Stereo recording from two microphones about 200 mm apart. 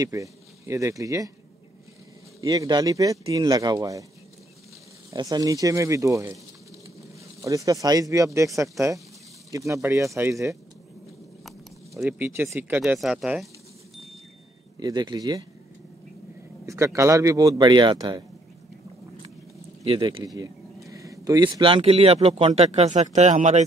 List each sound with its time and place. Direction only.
0.0 s speech: 15° right (ahead or behind)
2.4 s speech: 20° right (ahead or behind)
5.1 s speech: 20° right (ahead or behind)
7.4 s speech: 15° right (ahead or behind)
12.0 s speech: 10° right (ahead or behind)
14.8 s speech: 20° right (ahead or behind)
16.6 s speech: 15° right (ahead or behind)
19.8 s speech: 25° right (ahead or behind)